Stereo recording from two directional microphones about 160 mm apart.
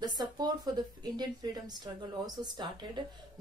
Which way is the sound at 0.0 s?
25° right (ahead or behind).